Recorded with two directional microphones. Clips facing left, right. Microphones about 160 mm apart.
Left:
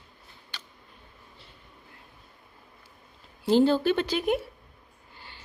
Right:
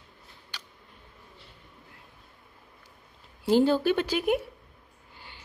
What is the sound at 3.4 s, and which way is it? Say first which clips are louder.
Speech: left 1 dB; 10° right (ahead or behind).